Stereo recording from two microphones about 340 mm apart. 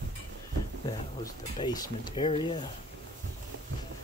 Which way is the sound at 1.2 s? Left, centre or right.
Centre.